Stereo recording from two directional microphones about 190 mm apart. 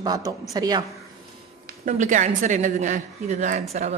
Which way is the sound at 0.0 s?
20° right (ahead or behind).